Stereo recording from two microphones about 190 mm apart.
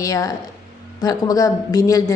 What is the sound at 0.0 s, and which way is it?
A woman's voice, 15° left (ahead or behind).